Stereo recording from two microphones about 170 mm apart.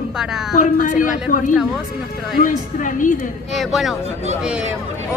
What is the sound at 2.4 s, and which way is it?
Speech, 50° left (ahead or behind).